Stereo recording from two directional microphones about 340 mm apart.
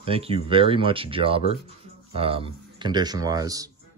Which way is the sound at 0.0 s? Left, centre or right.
Centre.